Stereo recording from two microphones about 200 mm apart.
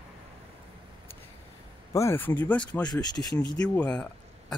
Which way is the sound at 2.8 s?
20° left (ahead or behind).